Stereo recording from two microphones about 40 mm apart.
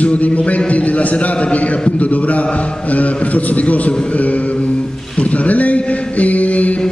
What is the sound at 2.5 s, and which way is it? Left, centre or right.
A man's voice, left.